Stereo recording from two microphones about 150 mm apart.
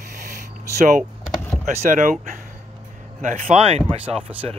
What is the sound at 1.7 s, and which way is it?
Speech, 60° right (ahead or behind).